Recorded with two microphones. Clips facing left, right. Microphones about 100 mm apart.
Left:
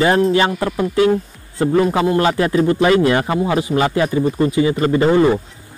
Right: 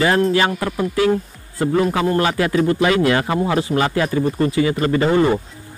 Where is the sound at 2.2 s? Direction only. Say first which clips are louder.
Left 2 dB; 25° left (ahead or behind).